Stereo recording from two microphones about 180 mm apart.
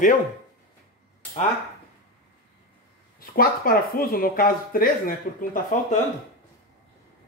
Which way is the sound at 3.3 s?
55° left (ahead or behind).